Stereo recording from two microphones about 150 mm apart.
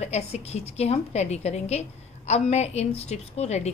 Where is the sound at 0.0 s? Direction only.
45° left (ahead or behind).